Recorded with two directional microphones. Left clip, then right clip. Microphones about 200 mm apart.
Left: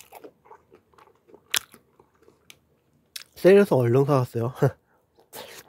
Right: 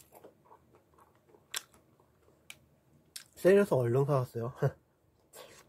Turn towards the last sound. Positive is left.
turn(degrees=55)  # may be behind; listen again after turning